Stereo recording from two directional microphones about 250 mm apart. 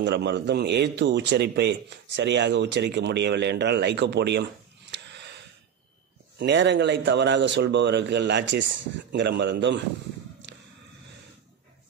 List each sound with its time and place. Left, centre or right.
0.0 s a man's voice: right
4.9 s a sound: right
6.3 s a man's voice: right